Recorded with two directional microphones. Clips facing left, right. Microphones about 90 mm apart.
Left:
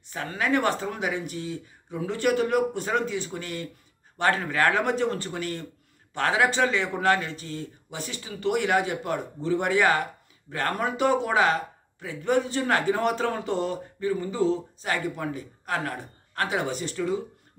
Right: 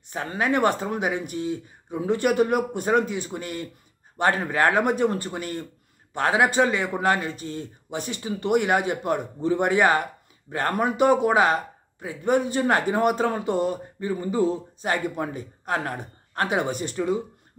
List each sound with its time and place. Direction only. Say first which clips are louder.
0.1 s speech: right 2 dB; 20° right (ahead or behind)